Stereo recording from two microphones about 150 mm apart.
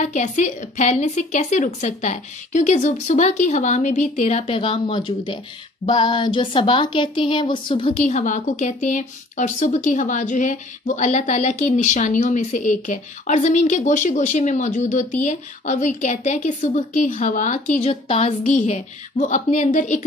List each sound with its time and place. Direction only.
0.0 s a woman's voice: 55° left (ahead or behind); by 8.1 s 35° left (ahead or behind)
8.1 s a woman's voice: 55° left (ahead or behind)